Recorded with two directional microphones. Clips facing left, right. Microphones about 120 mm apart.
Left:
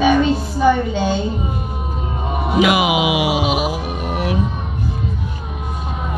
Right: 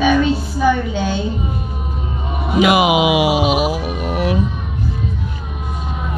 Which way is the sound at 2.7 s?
40° right (ahead or behind).